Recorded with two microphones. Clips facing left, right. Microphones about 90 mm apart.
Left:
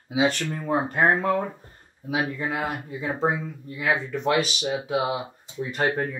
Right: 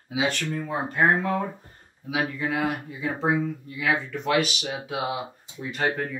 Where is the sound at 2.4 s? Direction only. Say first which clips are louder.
Right 2 dB; 30° left (ahead or behind).